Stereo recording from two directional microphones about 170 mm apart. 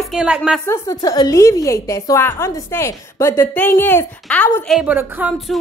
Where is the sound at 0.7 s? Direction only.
20° left (ahead or behind).